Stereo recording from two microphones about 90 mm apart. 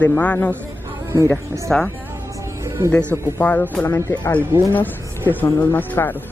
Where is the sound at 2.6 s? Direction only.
35° right (ahead or behind).